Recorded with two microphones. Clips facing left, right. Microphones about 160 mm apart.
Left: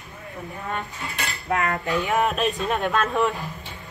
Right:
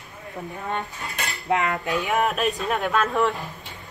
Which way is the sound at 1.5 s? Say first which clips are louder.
Right 1 dB; 20° right (ahead or behind).